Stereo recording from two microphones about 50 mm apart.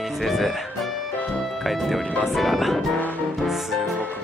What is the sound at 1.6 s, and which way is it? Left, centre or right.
Speech, centre.